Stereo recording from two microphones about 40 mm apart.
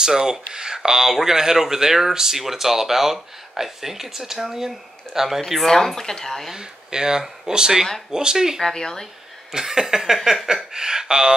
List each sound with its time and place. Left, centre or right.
0.0 s speech: centre
6.5 s speech: centre
8.6 s speech: centre
9.5 s speech: centre
10.7 s speech: centre